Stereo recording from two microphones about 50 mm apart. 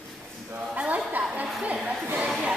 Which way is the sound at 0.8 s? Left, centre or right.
Right.